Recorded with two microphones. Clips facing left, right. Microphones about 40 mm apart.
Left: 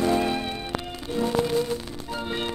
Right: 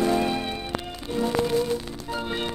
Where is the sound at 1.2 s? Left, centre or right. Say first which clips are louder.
Even; left.